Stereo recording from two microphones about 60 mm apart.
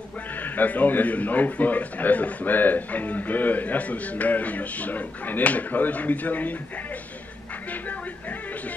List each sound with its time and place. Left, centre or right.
0.3 s a man's voice: left
7.7 s music: left